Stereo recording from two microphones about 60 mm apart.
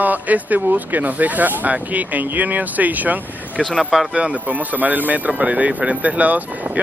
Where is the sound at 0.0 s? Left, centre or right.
Right.